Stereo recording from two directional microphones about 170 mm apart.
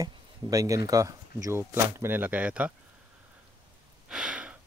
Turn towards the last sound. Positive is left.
turn(degrees=-5)  # may be behind; listen again after turning